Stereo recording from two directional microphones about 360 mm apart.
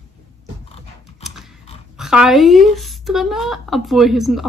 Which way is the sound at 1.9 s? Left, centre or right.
Centre.